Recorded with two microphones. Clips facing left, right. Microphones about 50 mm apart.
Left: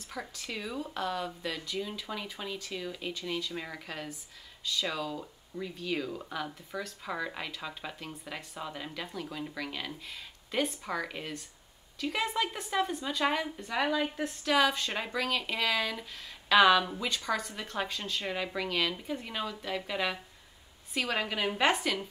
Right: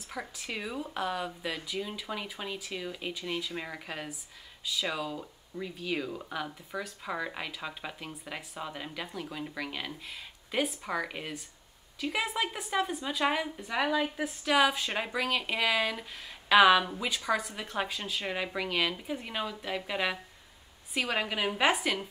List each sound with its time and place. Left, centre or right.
0.1 s speech: centre